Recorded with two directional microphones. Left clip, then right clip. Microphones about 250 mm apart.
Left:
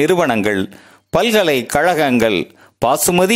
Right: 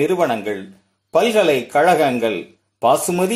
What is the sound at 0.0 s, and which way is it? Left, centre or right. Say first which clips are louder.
Speech: left 3 dB; left.